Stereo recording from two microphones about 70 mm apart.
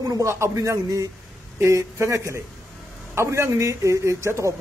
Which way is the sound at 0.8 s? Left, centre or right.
Right.